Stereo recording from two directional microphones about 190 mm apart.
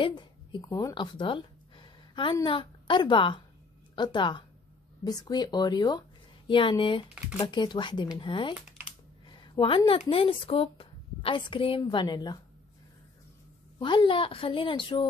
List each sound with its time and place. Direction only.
0.0 s a woman's voice: 25° left (ahead or behind)
13.7 s a woman's voice: 25° left (ahead or behind)